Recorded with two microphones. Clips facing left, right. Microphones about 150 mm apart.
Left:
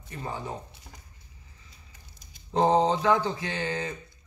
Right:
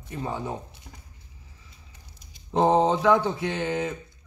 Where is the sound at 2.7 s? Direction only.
20° right (ahead or behind).